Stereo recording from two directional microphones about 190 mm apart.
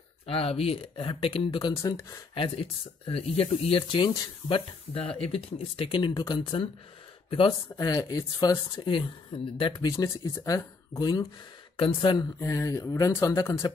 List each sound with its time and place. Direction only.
0.3 s speech: 30° left (ahead or behind)
1.8 s speech: 15° left (ahead or behind)
2.3 s speech: 30° left (ahead or behind)